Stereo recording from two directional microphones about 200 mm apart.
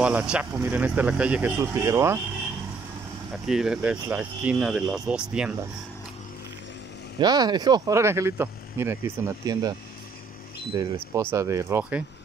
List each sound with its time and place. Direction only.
0.0 s speech: 5° right (ahead or behind)
3.4 s speech: 5° right (ahead or behind)
7.2 s speech: 20° right (ahead or behind)
10.8 s speech: 15° right (ahead or behind)